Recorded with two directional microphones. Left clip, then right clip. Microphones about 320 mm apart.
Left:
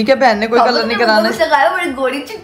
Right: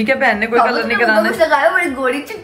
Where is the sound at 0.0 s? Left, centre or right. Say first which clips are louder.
Left 3 dB; centre.